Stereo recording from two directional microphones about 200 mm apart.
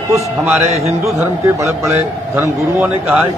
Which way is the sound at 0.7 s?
30° right (ahead or behind).